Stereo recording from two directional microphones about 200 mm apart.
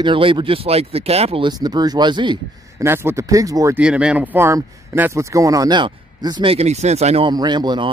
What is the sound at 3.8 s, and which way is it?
Speech, 5° right (ahead or behind).